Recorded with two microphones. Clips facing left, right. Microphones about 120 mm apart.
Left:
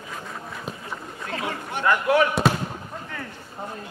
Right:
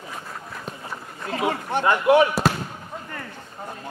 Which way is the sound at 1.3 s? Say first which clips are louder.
Right 6 dB; 30° right (ahead or behind).